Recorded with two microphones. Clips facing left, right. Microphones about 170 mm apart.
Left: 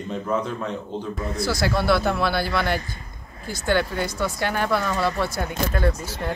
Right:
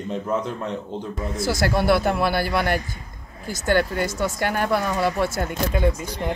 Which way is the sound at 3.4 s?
45° right (ahead or behind).